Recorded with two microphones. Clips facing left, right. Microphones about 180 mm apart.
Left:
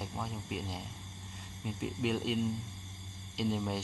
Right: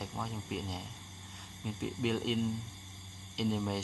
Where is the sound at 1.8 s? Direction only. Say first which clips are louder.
Even; centre (ahead or behind).